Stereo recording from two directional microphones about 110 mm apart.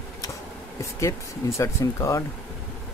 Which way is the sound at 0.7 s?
25° left (ahead or behind).